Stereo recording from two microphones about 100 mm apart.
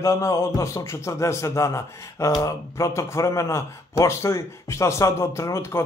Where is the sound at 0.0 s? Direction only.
30° left (ahead or behind).